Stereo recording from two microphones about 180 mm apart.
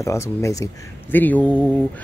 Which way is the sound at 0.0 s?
15° left (ahead or behind).